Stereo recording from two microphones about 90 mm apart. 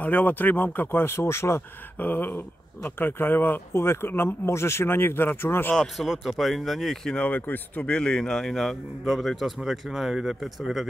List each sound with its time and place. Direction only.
0.0 s a man's voice: 20° left (ahead or behind)
5.8 s a man's voice: centre (ahead or behind)
7.2 s a man's voice: 20° left (ahead or behind); by 10.9 s centre (ahead or behind)